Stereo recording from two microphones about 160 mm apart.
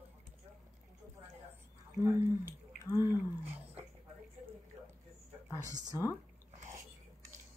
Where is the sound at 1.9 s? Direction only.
15° right (ahead or behind).